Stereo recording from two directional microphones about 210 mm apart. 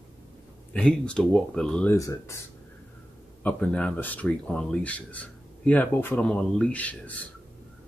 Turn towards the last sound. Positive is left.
turn(degrees=5)  # may be behind; listen again after turning